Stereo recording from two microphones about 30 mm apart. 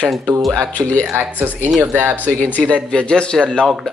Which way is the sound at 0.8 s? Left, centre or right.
Left.